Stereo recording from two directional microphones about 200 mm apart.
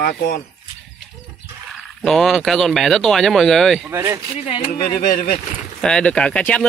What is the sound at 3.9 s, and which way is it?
Speech, 15° right (ahead or behind).